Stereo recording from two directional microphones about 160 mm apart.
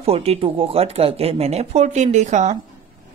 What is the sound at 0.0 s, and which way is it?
Speech, 40° right (ahead or behind).